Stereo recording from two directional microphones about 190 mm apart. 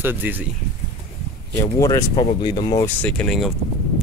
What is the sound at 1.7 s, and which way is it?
Speech, 20° left (ahead or behind).